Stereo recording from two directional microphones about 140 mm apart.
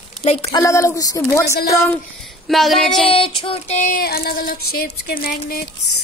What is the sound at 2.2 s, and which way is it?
Child singing, centre (ahead or behind).